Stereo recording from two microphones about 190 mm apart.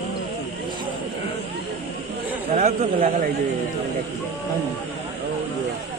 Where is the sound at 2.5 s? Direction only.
40° right (ahead or behind).